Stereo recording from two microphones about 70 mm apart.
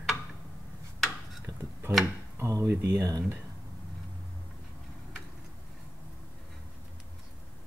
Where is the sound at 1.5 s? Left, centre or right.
Right.